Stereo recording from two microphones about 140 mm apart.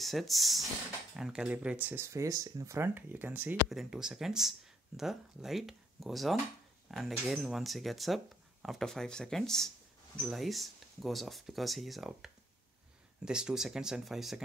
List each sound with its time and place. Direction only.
0.0 s speech: centre (ahead or behind)
2.0 s speech: 25° right (ahead or behind); by 14.4 s centre (ahead or behind)